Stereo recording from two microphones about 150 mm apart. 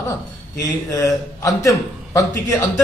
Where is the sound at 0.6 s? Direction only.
20° left (ahead or behind).